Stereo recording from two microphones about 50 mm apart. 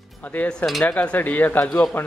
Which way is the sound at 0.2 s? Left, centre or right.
Left.